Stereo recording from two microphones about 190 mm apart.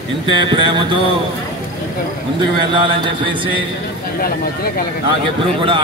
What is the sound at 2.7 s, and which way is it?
Speech, 25° right (ahead or behind).